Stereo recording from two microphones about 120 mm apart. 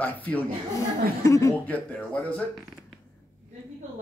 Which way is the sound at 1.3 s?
25° left (ahead or behind).